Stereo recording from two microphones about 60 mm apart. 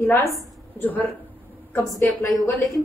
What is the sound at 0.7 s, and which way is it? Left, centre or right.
Speech, left.